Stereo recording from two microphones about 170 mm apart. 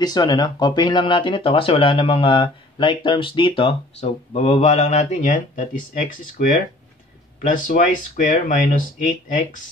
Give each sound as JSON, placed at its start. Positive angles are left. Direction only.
{"t": 0.0, "sound": "speech", "side_deg": 25}